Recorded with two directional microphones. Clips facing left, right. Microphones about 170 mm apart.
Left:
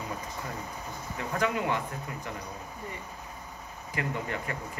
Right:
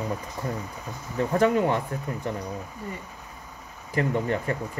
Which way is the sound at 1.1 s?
35° right (ahead or behind).